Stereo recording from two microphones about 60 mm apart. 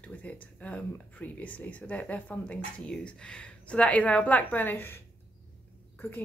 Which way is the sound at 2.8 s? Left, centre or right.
Centre.